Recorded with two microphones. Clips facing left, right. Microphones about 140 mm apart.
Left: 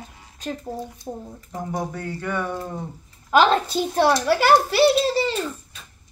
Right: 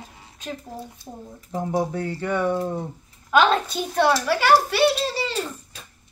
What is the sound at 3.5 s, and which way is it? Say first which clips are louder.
Speech: left 3 dB; 35° left (ahead or behind).